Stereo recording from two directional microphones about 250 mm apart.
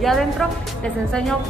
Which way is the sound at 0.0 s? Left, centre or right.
Centre.